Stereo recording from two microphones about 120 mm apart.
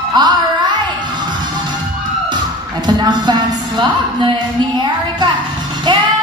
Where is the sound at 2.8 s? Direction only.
40° right (ahead or behind).